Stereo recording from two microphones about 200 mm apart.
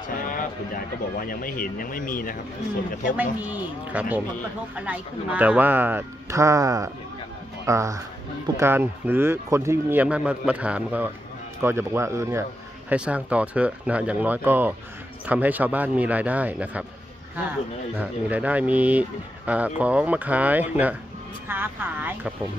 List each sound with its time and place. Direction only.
0.2 s a sound: 45° left (ahead or behind)
1.3 s speech: 45° left (ahead or behind)
3.2 s speech: 10° right (ahead or behind)
17.9 s speech: 5° right (ahead or behind)